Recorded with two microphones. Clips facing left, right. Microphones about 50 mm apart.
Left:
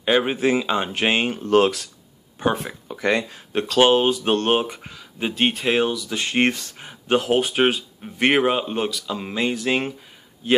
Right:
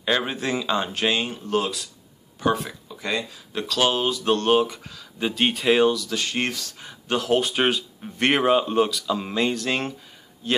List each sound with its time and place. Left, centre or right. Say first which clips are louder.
0.0 s speech: left 5 dB; left
1.0 s speech: left 5 dB; left
1.4 s speech: left 7 dB; left
2.4 s speech: left 1 dB; left
2.9 s speech: left 7 dB; left; by 5.5 s centre
5.5 s speech: right 2 dB; centre; by 7.3 s left
7.3 s speech: left 2 dB; centre